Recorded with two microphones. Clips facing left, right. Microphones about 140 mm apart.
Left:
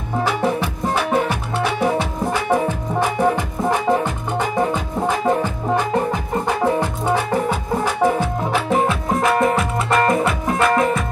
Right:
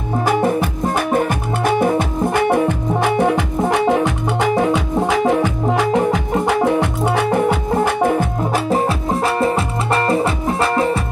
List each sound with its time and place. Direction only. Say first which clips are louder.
0.2 s music: right 3 dB; 50° right (ahead or behind); by 10.9 s 30° right (ahead or behind)